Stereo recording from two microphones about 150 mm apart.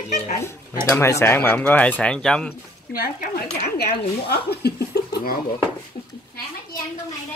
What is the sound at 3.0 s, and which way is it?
Speech, 90° left.